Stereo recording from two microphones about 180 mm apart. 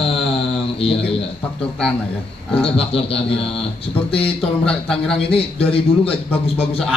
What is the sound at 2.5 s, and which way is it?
Speech, 30° left (ahead or behind).